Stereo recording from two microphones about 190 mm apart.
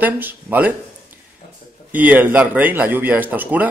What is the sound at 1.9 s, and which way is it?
Speech, 10° right (ahead or behind).